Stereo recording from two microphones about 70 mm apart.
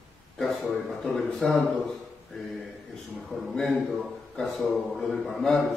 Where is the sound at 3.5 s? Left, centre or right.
Centre.